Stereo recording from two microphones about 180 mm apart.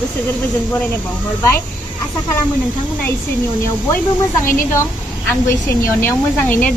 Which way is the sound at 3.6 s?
15° left (ahead or behind).